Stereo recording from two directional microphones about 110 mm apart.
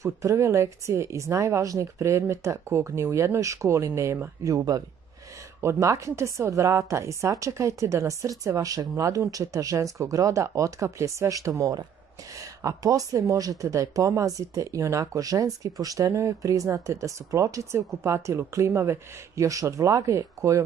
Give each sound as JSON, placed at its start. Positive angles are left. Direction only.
{"t": 0.0, "sound": "speech", "side_deg": -25}